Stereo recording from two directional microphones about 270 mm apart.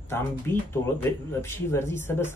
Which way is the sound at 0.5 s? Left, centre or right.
Centre.